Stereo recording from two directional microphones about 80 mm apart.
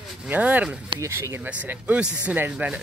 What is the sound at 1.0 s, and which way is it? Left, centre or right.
Speech, right.